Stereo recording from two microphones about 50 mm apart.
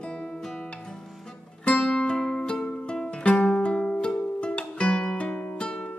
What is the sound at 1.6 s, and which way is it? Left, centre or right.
Music, left.